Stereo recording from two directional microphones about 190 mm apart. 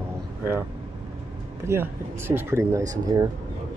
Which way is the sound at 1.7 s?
10° right (ahead or behind).